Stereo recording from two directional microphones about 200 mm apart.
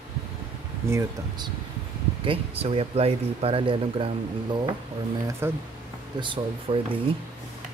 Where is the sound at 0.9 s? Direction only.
15° right (ahead or behind).